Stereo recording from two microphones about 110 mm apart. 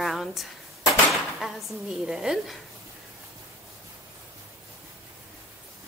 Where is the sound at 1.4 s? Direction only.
5° right (ahead or behind).